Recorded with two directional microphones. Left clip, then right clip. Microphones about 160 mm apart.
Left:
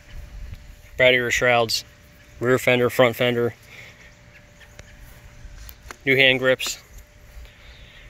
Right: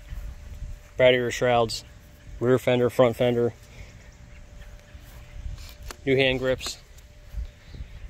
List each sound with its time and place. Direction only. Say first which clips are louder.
0.9 s speech: left 3 dB; 20° right (ahead or behind)
6.0 s speech: left 6 dB; 10° left (ahead or behind)